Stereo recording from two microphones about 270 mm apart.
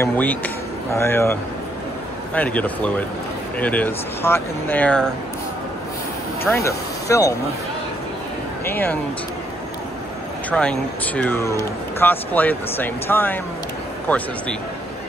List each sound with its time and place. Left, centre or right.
0.0 s speech: centre
6.4 s speech: centre
8.6 s speech: centre
10.5 s speech: centre